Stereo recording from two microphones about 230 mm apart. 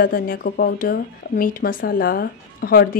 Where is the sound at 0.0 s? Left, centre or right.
Left.